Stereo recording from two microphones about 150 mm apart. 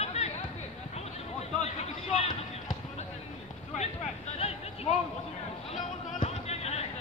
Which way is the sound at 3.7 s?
45° left (ahead or behind).